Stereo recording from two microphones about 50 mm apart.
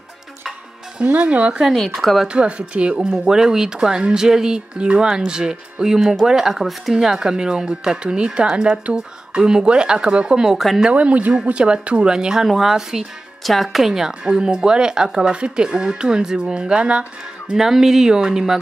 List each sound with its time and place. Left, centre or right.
0.9 s speech: right
2.0 s speech: centre
2.2 s speech: right
10.9 s speech: right
17.6 s speech: centre